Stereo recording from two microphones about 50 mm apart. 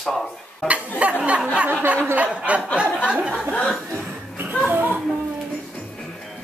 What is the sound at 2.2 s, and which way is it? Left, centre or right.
Chuckle, right.